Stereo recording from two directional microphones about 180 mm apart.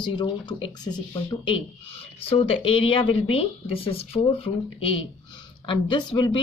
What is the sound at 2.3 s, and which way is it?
Speech, 30° left (ahead or behind).